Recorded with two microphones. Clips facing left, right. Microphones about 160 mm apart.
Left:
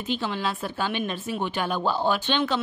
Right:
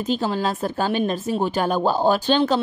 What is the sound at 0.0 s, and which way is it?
A woman's voice, 40° right (ahead or behind).